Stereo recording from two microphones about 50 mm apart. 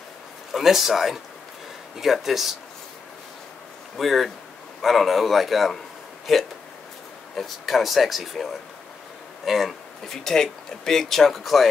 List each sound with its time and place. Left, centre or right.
0.5 s a man's voice: centre
3.9 s speech: centre
10.0 s speech: centre